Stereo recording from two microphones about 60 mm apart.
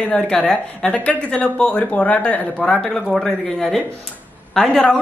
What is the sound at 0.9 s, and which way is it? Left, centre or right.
Speech, left.